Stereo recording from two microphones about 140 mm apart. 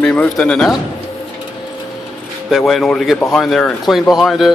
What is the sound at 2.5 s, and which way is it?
Speech, centre (ahead or behind).